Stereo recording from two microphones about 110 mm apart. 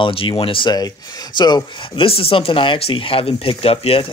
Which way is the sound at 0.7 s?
35° left (ahead or behind).